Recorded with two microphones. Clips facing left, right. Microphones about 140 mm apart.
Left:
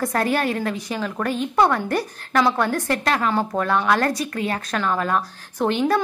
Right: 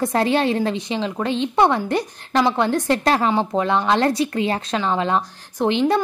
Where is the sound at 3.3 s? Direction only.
20° right (ahead or behind).